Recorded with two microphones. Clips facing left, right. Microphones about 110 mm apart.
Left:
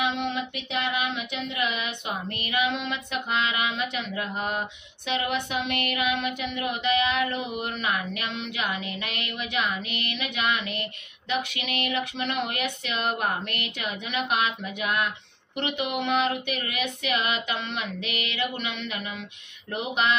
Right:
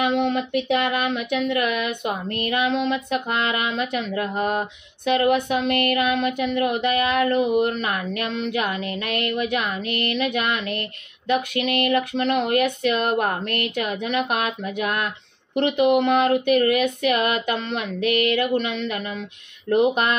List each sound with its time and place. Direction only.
0.0 s speech: 50° right (ahead or behind)
7.4 s speech: 30° right (ahead or behind)
7.7 s speech: 45° right (ahead or behind)